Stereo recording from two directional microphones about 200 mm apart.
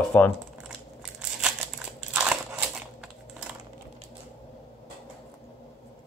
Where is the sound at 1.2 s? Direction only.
5° right (ahead or behind).